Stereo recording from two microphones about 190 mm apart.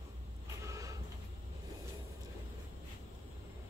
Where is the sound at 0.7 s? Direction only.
15° right (ahead or behind).